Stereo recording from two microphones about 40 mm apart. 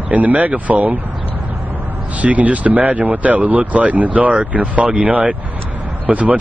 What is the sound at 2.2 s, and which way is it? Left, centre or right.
Speech, right.